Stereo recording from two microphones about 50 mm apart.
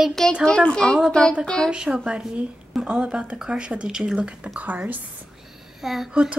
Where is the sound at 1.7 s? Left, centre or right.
Centre.